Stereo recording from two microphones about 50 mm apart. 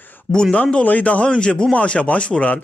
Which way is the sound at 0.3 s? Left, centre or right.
Centre.